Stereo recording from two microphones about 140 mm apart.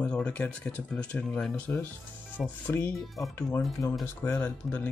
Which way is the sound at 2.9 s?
Centre (ahead or behind).